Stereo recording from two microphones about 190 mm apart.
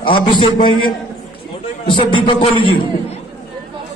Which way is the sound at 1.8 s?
25° left (ahead or behind).